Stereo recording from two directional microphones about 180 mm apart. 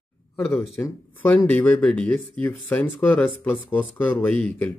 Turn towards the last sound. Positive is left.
turn(degrees=10)  # may be behind; listen again after turning